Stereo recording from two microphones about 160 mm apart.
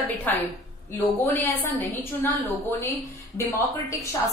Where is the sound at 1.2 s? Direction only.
10° left (ahead or behind).